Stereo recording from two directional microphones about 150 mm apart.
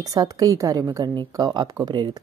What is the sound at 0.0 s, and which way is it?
A woman's voice, 25° right (ahead or behind).